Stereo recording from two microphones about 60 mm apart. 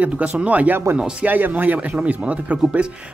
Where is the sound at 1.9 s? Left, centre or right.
Centre.